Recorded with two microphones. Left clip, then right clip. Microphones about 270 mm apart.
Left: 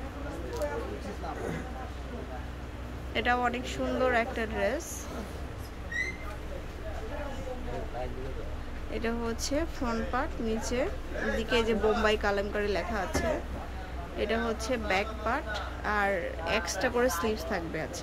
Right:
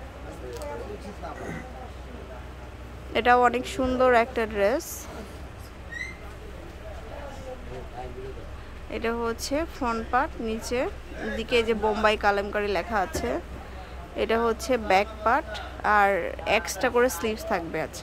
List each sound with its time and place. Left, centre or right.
3.1 s a woman's voice: centre
8.9 s a woman's voice: centre